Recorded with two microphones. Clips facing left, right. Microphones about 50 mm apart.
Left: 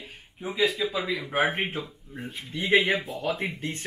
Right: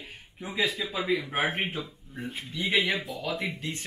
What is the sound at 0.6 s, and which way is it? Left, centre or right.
Speech, left.